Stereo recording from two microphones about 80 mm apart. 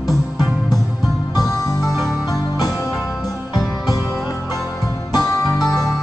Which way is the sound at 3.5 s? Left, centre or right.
Left.